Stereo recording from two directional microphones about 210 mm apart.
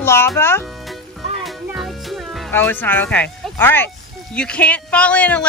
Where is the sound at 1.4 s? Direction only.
Centre (ahead or behind).